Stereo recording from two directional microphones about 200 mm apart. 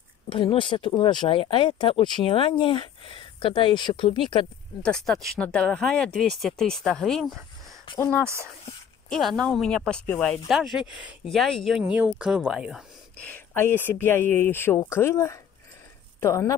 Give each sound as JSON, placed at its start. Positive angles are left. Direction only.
{"t": 0.3, "sound": "speech", "side_deg": 25}
{"t": 4.8, "sound": "speech", "side_deg": 5}
{"t": 7.9, "sound": "speech", "side_deg": 25}
{"t": 8.2, "sound": "speech", "side_deg": -15}
{"t": 9.1, "sound": "speech", "side_deg": 0}
{"t": 13.2, "sound": "speech", "side_deg": 10}